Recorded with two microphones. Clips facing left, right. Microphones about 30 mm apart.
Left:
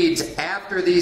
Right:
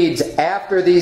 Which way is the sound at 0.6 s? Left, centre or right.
Centre.